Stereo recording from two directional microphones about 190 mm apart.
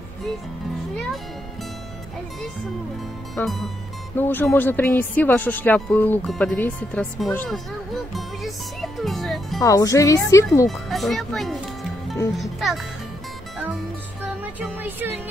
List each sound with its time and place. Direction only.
3.3 s a child's voice: centre (ahead or behind)
9.6 s speech: 20° left (ahead or behind)
10.7 s a child's voice: centre (ahead or behind)
14.8 s music: 10° right (ahead or behind)